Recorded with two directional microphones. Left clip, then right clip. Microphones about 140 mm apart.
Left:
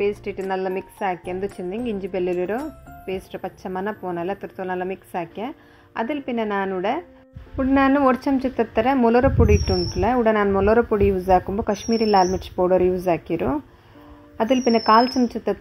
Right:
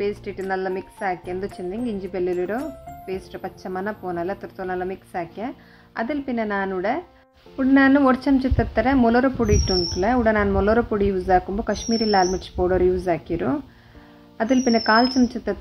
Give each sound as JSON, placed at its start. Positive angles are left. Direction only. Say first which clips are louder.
{"t": 0.1, "sound": "speech", "louder": "left 1 dB", "side_deg": 20}